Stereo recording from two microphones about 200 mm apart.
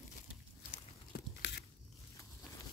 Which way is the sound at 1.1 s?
50° left (ahead or behind).